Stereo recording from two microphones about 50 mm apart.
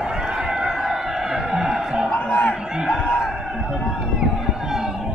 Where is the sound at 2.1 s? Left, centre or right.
Left.